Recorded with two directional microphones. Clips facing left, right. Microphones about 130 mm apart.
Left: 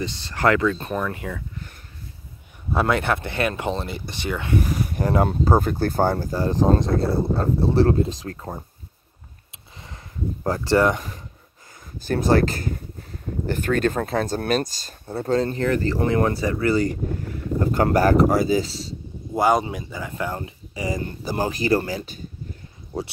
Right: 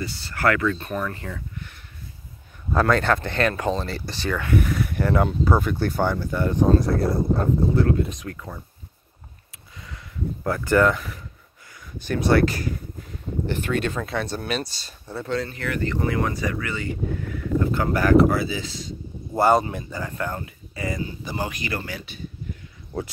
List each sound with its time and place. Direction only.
0.0 s speech: 20° left (ahead or behind)
2.8 s speech: 15° left (ahead or behind)
5.3 s speech: 45° left (ahead or behind)
9.8 s speech: 35° left (ahead or behind)
12.1 s speech: 40° left (ahead or behind)
19.3 s speech: 10° left (ahead or behind)
20.3 s speech: 25° left (ahead or behind)
21.2 s speech: 35° left (ahead or behind)